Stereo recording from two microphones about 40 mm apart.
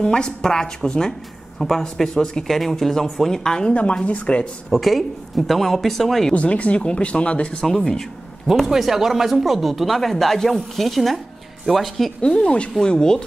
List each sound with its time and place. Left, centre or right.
0.0 s speech: left
2.4 s speech: centre
3.7 s speech: left
4.6 s speech: centre
6.3 s speech: left
7.6 s speech: centre
8.6 s speech: centre
12.3 s speech: left